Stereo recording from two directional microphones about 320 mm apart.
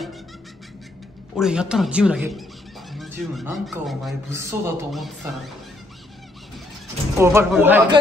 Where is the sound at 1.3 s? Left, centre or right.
Centre.